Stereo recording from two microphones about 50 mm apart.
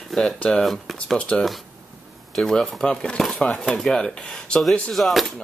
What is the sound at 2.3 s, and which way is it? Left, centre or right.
Speech, centre.